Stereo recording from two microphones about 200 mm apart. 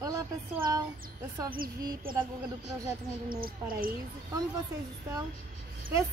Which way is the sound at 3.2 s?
45° right (ahead or behind).